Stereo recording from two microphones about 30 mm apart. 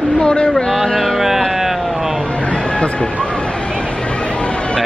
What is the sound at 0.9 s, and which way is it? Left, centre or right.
Speech, centre.